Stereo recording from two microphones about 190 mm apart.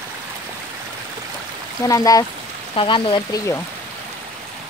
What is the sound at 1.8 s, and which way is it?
Frying, 20° left (ahead or behind).